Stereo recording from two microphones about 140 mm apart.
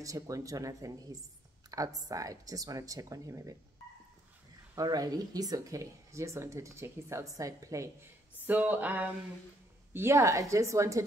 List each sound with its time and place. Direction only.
0.0 s speech: 25° right (ahead or behind)
4.7 s speech: 25° right (ahead or behind)
8.5 s speech: 10° right (ahead or behind)